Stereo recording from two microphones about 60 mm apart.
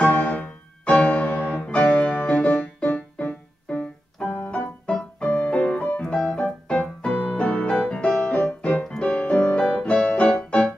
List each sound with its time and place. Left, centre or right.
0.0 s music: left
7.2 s keyboard: left
8.8 s music: centre